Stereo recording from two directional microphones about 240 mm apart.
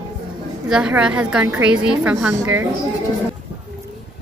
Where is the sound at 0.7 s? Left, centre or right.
Centre.